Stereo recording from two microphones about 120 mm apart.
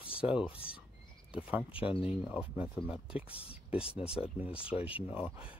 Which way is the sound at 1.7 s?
50° left (ahead or behind).